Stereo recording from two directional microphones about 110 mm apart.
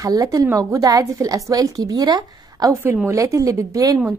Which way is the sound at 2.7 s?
25° right (ahead or behind).